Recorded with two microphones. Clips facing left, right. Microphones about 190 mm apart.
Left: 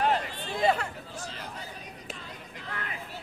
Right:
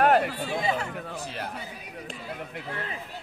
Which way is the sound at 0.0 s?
60° right (ahead or behind).